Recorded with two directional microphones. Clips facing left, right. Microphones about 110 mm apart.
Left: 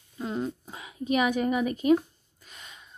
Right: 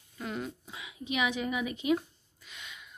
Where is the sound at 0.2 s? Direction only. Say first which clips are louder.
Left 6 dB; 30° left (ahead or behind).